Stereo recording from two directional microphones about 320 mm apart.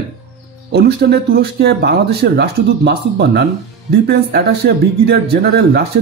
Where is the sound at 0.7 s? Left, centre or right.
Right.